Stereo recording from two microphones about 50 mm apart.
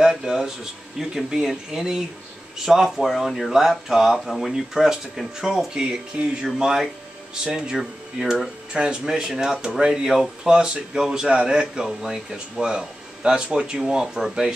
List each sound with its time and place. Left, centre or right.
0.0 s a sound: centre
0.9 s speech: centre
5.8 s speech: right
6.4 s speech: centre